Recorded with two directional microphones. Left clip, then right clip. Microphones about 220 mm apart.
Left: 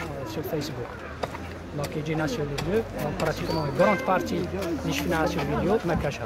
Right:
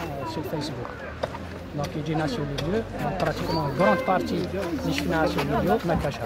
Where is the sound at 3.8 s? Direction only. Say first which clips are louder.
Even; centre (ahead or behind).